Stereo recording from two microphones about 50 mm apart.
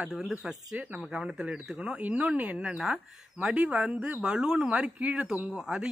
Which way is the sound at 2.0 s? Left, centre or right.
Right.